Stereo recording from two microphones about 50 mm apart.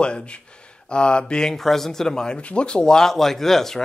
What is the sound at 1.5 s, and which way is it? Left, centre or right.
Speech, centre.